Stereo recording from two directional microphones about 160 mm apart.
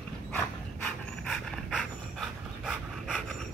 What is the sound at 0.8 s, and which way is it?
Dog, 5° left (ahead or behind).